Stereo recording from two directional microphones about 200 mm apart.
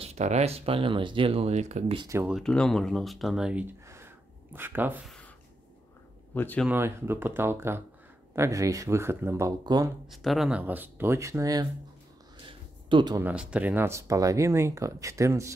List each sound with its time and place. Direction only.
0.0 s speech: 35° right (ahead or behind)
2.0 s speech: 10° right (ahead or behind)
2.3 s speech: 5° left (ahead or behind)
6.3 s speech: 10° left (ahead or behind)
6.7 s speech: 10° right (ahead or behind)
10.2 s speech: centre (ahead or behind); by 11.6 s 15° right (ahead or behind)
12.4 s a sound: 25° right (ahead or behind)
13.2 s speech: 5° right (ahead or behind)